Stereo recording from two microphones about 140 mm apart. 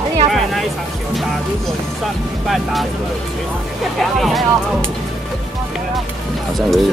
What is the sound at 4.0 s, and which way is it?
Speech, centre (ahead or behind).